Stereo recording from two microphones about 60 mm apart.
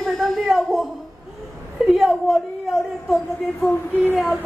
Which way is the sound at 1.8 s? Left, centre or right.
Centre.